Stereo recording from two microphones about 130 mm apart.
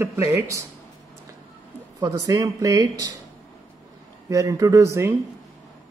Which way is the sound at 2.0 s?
25° right (ahead or behind).